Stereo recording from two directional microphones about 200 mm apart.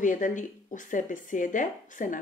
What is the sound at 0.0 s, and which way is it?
Speech, 40° left (ahead or behind).